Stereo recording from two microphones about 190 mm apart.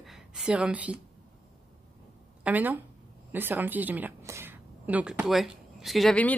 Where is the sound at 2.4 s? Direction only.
10° right (ahead or behind).